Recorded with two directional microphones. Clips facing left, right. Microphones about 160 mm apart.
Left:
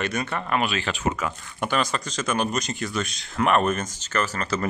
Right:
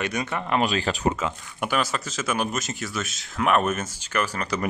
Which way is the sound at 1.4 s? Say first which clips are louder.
Left 2 dB; 5° right (ahead or behind).